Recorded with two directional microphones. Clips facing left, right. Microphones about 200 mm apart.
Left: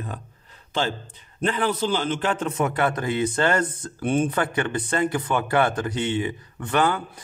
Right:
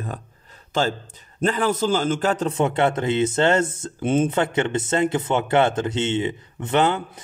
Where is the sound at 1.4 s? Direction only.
45° right (ahead or behind).